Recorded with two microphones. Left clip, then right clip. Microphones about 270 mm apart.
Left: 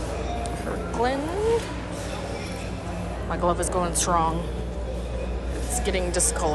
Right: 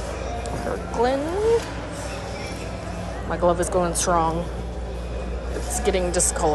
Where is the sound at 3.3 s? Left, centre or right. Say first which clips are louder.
Right 4 dB; centre.